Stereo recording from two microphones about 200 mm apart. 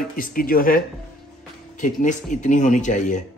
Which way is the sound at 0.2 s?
45° left (ahead or behind).